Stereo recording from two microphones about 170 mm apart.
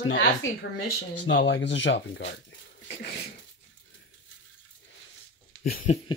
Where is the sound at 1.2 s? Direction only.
90° left.